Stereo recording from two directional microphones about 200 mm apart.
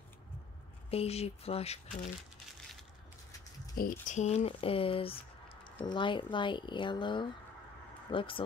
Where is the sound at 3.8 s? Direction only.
40° left (ahead or behind).